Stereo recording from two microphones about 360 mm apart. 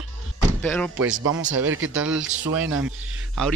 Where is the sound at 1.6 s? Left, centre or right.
Right.